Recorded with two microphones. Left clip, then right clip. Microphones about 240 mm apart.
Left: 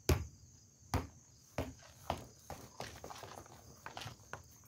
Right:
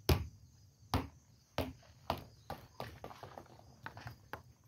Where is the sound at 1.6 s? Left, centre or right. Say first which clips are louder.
Right 3 dB; centre.